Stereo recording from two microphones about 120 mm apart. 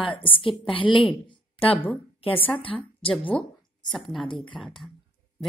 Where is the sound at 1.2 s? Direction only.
50° left (ahead or behind).